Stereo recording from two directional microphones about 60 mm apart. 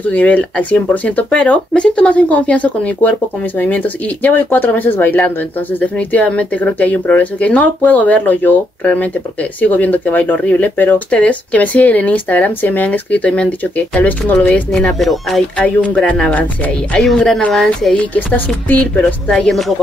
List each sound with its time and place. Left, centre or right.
0.0 s speech: left
11.1 s speech: left
15.0 s speech: centre
15.5 s speech: left
19.3 s speech: centre